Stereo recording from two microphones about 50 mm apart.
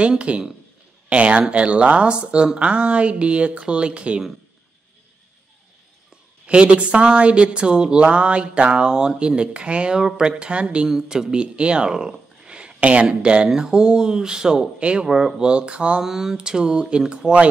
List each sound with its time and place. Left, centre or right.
0.0 s a woman's voice: right
6.4 s a woman's voice: right
10.9 s speech: centre
15.0 s a woman's voice: centre
16.0 s a woman's voice: centre